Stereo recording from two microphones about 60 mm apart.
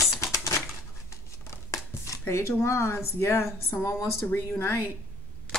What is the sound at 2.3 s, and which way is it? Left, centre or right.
A woman's voice, left.